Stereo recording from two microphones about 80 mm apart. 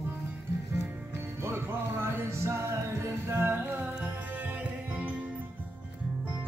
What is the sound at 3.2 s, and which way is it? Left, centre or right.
Music, right.